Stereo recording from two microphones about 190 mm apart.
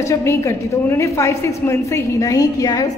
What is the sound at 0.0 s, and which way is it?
A woman's voice, 15° left (ahead or behind).